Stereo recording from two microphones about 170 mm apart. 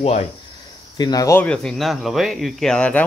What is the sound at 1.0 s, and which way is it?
Speech, 20° left (ahead or behind).